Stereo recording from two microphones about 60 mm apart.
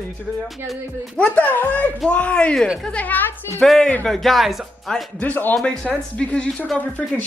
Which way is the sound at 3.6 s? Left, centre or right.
Centre.